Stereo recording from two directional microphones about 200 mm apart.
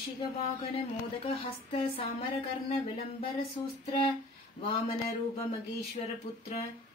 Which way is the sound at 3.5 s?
25° left (ahead or behind).